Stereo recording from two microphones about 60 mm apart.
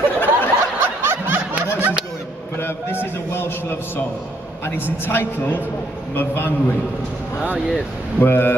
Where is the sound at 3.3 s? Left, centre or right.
Left.